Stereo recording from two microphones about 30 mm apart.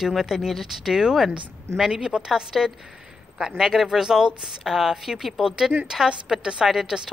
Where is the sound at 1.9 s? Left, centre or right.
Right.